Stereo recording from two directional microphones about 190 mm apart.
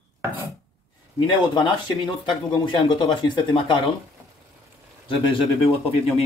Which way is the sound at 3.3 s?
25° left (ahead or behind).